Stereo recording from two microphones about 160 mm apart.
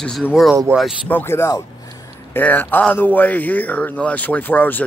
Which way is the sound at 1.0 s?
15° left (ahead or behind).